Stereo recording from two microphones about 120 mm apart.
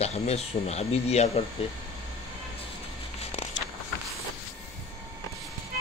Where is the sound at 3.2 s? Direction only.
60° left (ahead or behind).